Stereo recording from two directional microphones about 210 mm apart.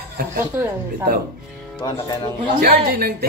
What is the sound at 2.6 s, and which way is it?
Speech, 45° right (ahead or behind).